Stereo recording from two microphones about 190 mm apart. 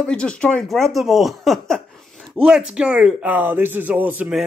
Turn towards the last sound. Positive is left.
turn(degrees=-5)  # may be behind; listen again after turning